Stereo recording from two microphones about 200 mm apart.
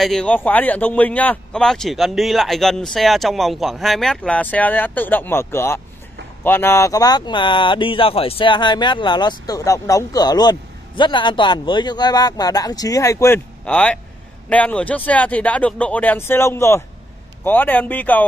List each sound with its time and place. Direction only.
0.0 s speech: 5° left (ahead or behind)